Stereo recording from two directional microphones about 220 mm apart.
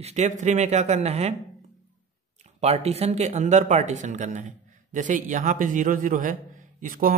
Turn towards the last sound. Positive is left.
turn(degrees=-40)  # may be behind; listen again after turning